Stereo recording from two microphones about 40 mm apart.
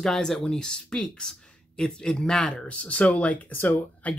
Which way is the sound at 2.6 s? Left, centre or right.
Left.